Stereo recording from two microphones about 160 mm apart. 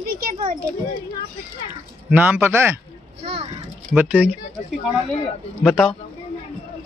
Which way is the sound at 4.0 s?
10° right (ahead or behind).